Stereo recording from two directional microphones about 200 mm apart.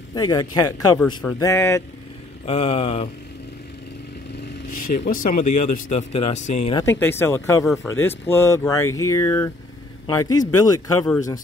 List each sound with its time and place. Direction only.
0.1 s speech: 20° left (ahead or behind)
2.4 s speech: 30° left (ahead or behind)
4.6 s speech: 45° left (ahead or behind)
6.8 s a man's voice: 10° left (ahead or behind)